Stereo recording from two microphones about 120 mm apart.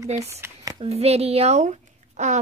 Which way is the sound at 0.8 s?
60° right (ahead or behind).